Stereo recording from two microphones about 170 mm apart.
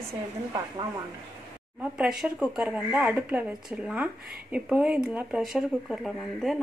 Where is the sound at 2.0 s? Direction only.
5° right (ahead or behind).